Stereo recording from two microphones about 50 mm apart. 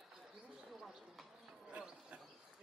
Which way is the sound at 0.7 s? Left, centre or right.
Centre.